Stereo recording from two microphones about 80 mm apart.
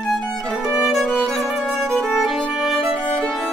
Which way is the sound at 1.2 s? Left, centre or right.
Centre.